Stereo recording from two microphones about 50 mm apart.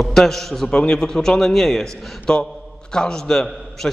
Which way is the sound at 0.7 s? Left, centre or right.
Centre.